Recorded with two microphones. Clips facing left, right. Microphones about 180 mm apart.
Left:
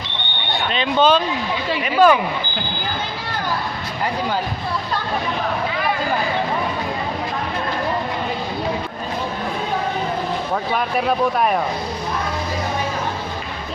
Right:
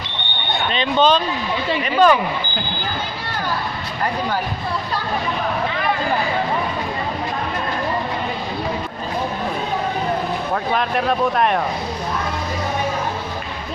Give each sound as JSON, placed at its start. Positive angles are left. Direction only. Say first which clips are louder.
{"t": 0.5, "sound": "a sound", "louder": "even", "side_deg": 0}
{"t": 1.8, "sound": "speech", "louder": "left 1 dB", "side_deg": 10}
{"t": 10.5, "sound": "speech", "louder": "right 1 dB", "side_deg": 5}